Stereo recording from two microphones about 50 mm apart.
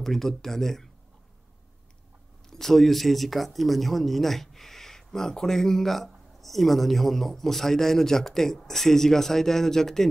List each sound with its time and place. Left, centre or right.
0.0 s speech: centre
2.5 s speech: centre